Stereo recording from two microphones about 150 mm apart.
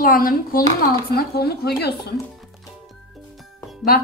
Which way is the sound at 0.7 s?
90° left.